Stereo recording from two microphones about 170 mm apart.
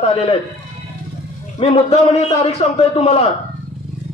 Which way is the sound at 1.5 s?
35° left (ahead or behind).